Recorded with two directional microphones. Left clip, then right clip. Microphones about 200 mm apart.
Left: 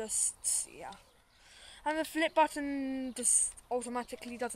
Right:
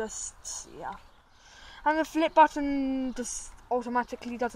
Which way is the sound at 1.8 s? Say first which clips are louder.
Right 6 dB; 20° right (ahead or behind).